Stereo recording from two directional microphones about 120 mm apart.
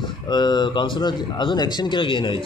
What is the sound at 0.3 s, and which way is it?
Speech, 35° left (ahead or behind).